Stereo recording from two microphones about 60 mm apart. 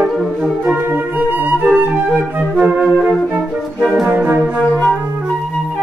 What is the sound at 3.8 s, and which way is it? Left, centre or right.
Music, centre.